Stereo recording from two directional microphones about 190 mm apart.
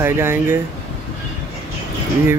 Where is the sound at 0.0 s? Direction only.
10° right (ahead or behind).